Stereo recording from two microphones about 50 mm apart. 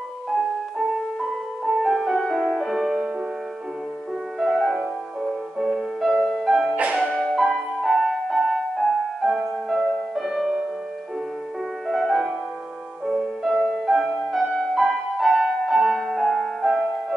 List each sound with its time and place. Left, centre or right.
1.6 s music: centre
4.4 s music: centre
4.7 s music: centre
6.6 s music: right
7.1 s music: centre
11.9 s music: centre